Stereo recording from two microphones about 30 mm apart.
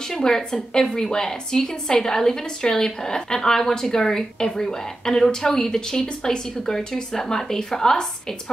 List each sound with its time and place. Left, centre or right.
0.1 s a woman's voice: centre